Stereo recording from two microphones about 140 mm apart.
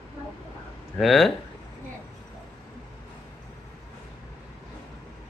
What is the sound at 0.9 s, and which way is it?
Speech, centre (ahead or behind).